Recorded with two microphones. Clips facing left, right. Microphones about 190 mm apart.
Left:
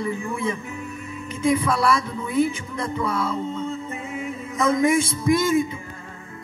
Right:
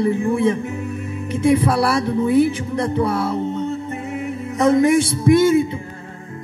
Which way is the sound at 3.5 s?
70° right (ahead or behind).